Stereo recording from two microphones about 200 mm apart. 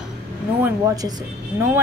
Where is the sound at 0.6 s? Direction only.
15° right (ahead or behind).